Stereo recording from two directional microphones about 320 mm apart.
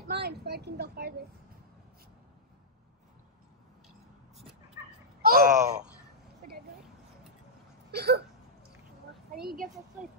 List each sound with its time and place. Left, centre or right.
0.1 s speech: right
5.2 s speech: right
7.9 s hiccup: right
9.4 s speech: right